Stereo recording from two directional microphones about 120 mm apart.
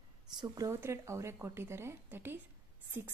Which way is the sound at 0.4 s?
25° right (ahead or behind).